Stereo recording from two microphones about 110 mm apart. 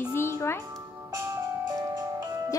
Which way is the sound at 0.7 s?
30° right (ahead or behind).